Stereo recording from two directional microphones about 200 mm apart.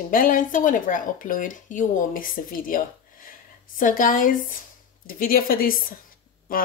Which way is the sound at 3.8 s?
45° left (ahead or behind).